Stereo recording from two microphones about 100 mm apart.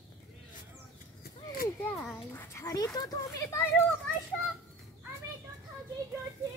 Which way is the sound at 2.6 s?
40° left (ahead or behind).